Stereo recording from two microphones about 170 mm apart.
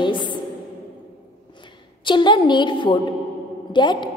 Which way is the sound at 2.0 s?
25° left (ahead or behind).